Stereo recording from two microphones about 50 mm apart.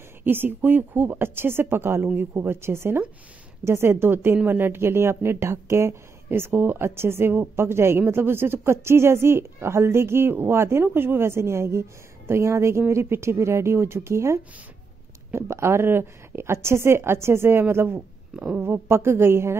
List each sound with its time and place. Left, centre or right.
0.2 s a woman's voice: right
12.3 s speech: right
12.9 s a woman's voice: right